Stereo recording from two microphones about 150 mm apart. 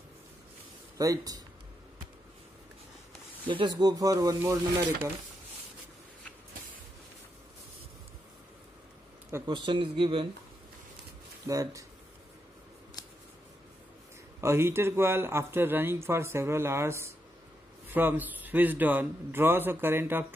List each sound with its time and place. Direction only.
0.9 s speech: 25° right (ahead or behind)
3.4 s speech: 30° right (ahead or behind)
9.5 s speech: 35° right (ahead or behind)
11.4 s speech: 20° right (ahead or behind)
14.4 s speech: 15° right (ahead or behind)